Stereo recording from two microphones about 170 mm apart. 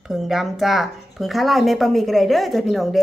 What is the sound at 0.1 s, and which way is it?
A woman's voice, centre (ahead or behind).